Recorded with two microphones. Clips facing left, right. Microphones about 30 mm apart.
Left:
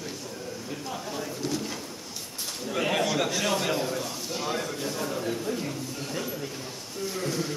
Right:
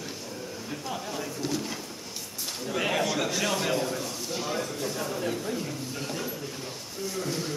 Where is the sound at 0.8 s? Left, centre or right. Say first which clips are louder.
Right 1 dB; centre.